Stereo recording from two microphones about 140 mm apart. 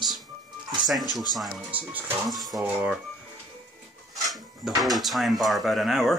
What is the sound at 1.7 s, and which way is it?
Speech, 10° right (ahead or behind).